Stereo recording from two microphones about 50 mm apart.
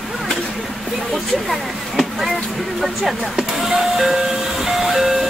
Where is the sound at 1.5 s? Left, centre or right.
Centre.